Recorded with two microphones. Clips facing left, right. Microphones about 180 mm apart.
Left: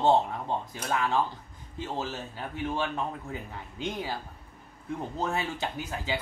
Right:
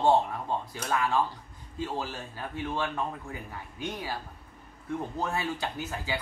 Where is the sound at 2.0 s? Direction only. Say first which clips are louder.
Left 1 dB; 20° left (ahead or behind).